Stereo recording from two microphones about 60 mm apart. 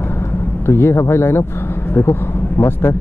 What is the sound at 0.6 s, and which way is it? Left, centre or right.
Speech, left.